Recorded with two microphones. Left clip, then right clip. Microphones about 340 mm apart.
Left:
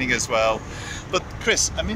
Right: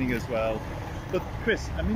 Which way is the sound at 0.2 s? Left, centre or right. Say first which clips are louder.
Left 8 dB; left.